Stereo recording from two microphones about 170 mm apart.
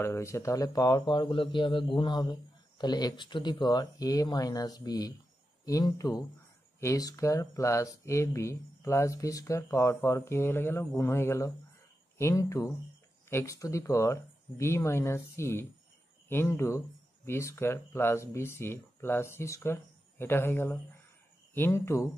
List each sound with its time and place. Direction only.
0.0 s speech: 15° left (ahead or behind)